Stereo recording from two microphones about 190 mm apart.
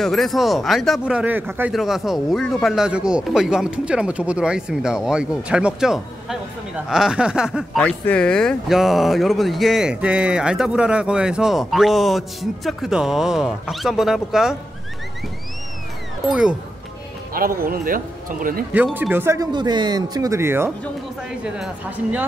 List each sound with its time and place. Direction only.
0.0 s speech: centre (ahead or behind)
7.8 s speech: 5° left (ahead or behind)
16.3 s speech: 5° right (ahead or behind)
17.6 s speech: 50° right (ahead or behind)
18.7 s speech: 10° right (ahead or behind)